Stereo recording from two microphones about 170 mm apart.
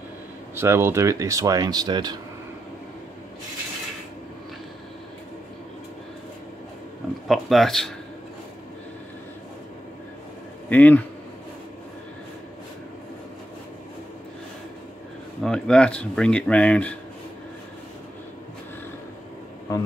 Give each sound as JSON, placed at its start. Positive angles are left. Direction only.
{"t": 0.6, "sound": "speech", "side_deg": -15}
{"t": 7.2, "sound": "speech", "side_deg": 0}
{"t": 10.7, "sound": "speech", "side_deg": 10}
{"t": 15.4, "sound": "speech", "side_deg": 5}